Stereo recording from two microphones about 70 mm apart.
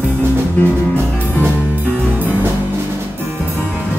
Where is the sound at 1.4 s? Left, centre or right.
Right.